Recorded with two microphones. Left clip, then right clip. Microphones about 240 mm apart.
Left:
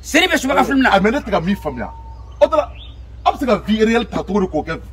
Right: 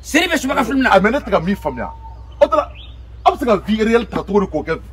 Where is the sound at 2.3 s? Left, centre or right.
Centre.